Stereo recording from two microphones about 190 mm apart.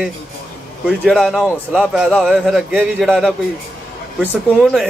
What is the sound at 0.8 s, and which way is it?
A man's voice, centre (ahead or behind).